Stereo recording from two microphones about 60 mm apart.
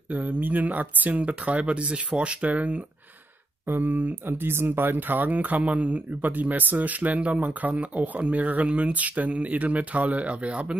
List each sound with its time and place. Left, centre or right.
0.1 s speech: right
3.6 s speech: right